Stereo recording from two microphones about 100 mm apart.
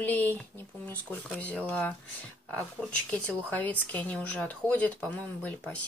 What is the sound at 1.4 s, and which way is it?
Speech, 10° left (ahead or behind).